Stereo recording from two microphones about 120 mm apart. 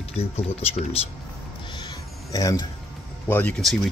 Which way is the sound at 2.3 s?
30° left (ahead or behind).